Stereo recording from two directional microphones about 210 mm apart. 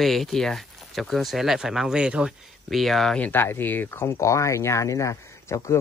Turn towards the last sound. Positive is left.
turn(degrees=15)  # may be behind; listen again after turning